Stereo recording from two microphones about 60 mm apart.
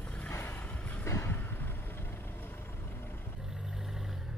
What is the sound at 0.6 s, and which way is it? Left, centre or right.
Vehicle, left.